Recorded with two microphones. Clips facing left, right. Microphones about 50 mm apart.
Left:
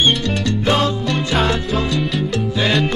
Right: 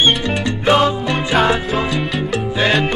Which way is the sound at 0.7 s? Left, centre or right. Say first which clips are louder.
Right 5 dB; centre.